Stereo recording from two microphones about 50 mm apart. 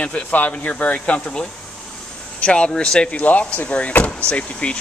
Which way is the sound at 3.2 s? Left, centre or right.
Left.